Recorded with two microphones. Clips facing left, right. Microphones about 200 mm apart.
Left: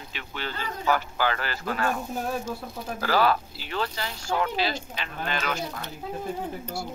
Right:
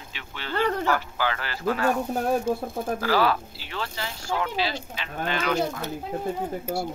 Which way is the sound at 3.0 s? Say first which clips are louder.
Left 1 dB; 45° left (ahead or behind).